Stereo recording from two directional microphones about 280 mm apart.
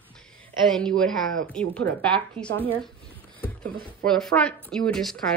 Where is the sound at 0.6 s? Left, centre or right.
Centre.